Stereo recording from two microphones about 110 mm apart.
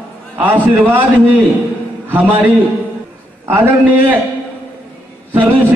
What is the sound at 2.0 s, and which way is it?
A man's voice, 15° right (ahead or behind).